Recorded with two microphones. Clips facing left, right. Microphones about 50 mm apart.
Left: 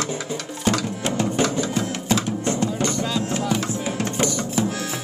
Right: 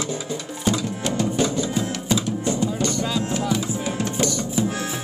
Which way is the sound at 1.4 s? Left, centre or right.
Left.